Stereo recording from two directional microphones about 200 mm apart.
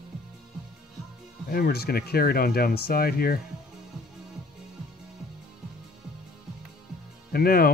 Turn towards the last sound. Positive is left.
turn(degrees=45)  # may be behind; listen again after turning